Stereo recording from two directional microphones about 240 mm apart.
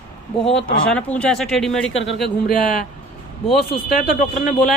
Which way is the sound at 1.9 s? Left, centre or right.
Left.